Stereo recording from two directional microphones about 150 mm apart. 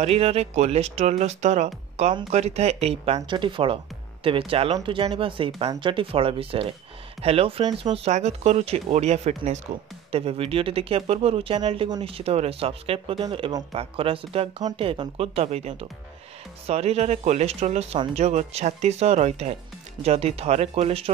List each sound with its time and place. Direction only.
0.0 s speech: 40° right (ahead or behind)
3.2 s speech: 30° right (ahead or behind)